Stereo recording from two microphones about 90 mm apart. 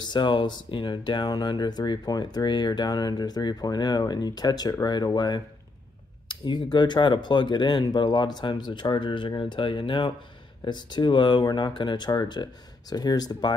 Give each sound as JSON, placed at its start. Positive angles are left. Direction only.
{"t": 0.0, "sound": "speech", "side_deg": 60}
{"t": 9.4, "sound": "speech", "side_deg": 70}